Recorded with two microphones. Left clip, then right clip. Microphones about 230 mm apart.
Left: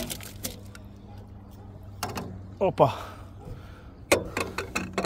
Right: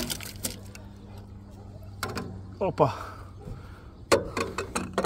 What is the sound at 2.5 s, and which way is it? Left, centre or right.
Speech, centre.